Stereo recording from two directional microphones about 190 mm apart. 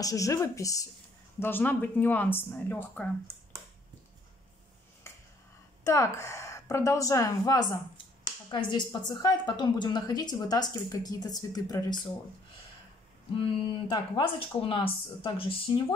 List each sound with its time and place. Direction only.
0.0 s a woman's voice: 15° left (ahead or behind)
5.9 s a woman's voice: 15° left (ahead or behind)
13.8 s a woman's voice: 25° left (ahead or behind)